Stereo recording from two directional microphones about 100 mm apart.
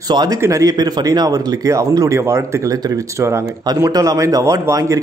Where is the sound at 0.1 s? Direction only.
40° right (ahead or behind).